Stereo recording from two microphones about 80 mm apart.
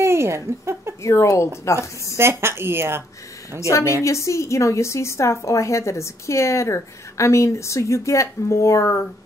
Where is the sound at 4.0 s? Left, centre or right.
Left.